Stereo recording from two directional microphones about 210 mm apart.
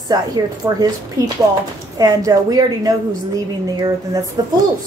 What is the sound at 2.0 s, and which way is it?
Speech, 15° right (ahead or behind).